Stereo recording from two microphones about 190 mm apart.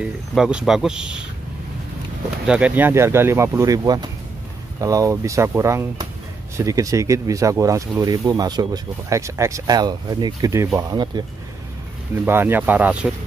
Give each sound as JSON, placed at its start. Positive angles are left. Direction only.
{"t": 0.0, "sound": "speech", "side_deg": -5}
{"t": 2.4, "sound": "speech", "side_deg": -5}
{"t": 12.3, "sound": "speech", "side_deg": -10}